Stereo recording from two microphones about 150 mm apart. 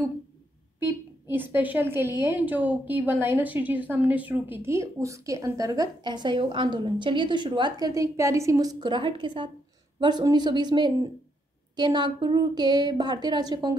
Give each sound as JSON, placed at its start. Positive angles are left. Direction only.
{"t": 0.7, "sound": "a woman's voice", "side_deg": -15}